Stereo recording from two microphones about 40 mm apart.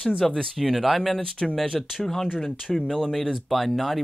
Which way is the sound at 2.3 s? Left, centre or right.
Centre.